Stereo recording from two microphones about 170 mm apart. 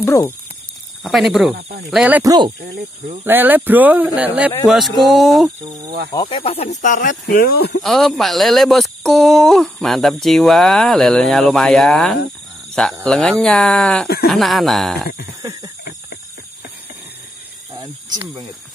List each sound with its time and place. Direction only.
0.0 s speech: 15° left (ahead or behind)
1.0 s speech: centre (ahead or behind)
2.2 s speech: 25° right (ahead or behind)
3.3 s speech: 10° right (ahead or behind)
6.1 s speech: 30° left (ahead or behind); by 7.2 s 50° left (ahead or behind)
7.3 s speech: 65° left (ahead or behind)
7.8 s speech: centre (ahead or behind)